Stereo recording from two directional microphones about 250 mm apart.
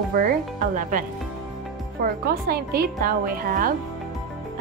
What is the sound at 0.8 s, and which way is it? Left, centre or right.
Speech, right.